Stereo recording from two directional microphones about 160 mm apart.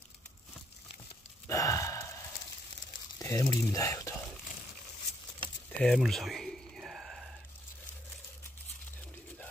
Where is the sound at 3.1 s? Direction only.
20° left (ahead or behind).